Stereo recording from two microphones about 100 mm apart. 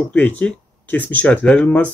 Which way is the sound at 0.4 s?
15° left (ahead or behind).